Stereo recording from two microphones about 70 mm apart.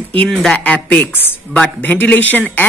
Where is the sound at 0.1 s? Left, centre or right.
Centre.